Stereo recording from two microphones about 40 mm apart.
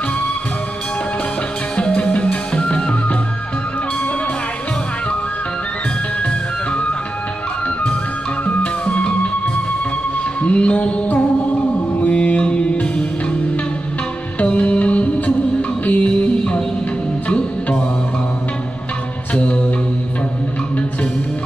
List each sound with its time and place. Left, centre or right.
1.8 s music: left
8.5 s music: left
10.4 s music: left
14.4 s music: left
19.4 s music: left